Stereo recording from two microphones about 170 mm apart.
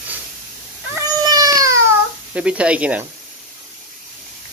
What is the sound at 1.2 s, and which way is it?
Baby cry, 20° right (ahead or behind).